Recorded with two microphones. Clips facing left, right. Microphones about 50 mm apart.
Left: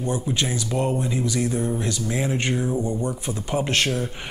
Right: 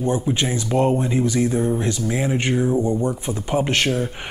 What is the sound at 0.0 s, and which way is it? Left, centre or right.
Speech, right.